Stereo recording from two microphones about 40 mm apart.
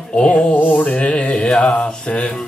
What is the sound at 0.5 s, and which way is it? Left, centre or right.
Music, left.